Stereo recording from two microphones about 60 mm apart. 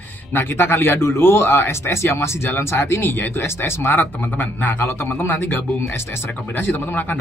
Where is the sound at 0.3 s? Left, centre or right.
Left.